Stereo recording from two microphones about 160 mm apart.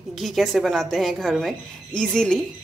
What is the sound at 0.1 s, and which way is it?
A woman's voice, centre (ahead or behind).